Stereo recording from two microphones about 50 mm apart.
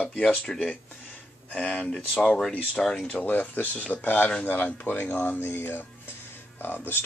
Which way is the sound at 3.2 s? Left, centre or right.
Left.